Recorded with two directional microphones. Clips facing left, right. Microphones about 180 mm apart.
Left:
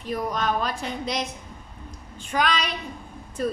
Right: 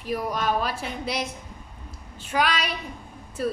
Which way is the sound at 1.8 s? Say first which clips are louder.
Left 1 dB; 5° right (ahead or behind).